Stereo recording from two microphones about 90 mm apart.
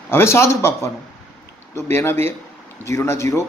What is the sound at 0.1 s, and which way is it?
A man's voice, 30° left (ahead or behind).